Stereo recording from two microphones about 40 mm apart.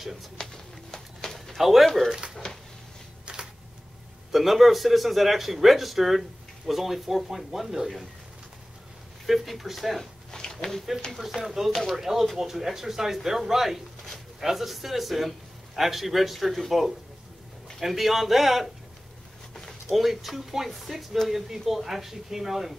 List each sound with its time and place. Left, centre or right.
0.4 s a sound: centre
1.6 s a man's voice: centre
2.0 s speech: right
3.3 s camera: right
4.3 s a man's voice: centre
9.2 s a man's voice: centre
10.3 s a sound: centre
11.1 s a man's voice: centre
12.0 s a man's voice: centre
19.9 s a man's voice: centre